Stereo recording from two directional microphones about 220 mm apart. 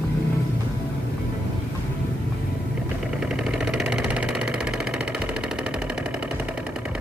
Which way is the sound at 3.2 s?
Centre (ahead or behind).